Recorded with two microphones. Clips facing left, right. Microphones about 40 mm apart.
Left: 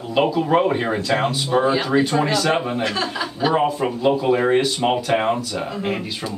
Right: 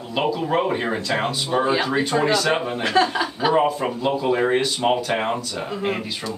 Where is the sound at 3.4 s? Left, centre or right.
Centre.